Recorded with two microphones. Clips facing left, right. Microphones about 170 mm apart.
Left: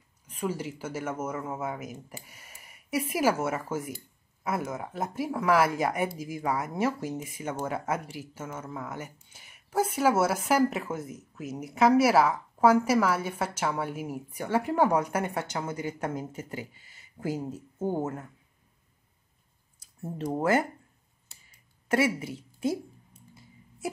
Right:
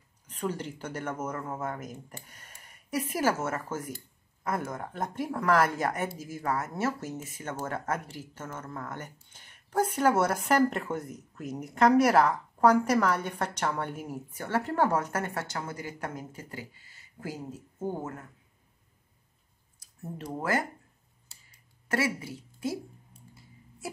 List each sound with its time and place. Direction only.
0.3 s speech: 10° left (ahead or behind); by 18.2 s 25° left (ahead or behind)
20.0 s speech: 25° left (ahead or behind)
21.9 s a woman's voice: 20° left (ahead or behind)